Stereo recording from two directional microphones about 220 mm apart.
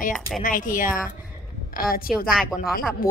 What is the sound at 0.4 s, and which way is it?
Speech, 40° left (ahead or behind).